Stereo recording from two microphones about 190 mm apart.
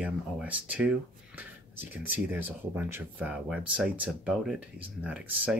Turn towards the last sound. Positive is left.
turn(degrees=-5)  # may be behind; listen again after turning